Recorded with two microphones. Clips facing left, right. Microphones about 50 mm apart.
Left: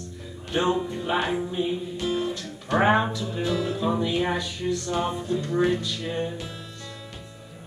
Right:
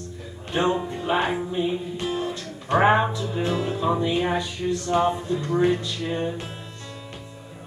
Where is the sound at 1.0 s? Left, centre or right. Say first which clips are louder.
Right 2 dB; right.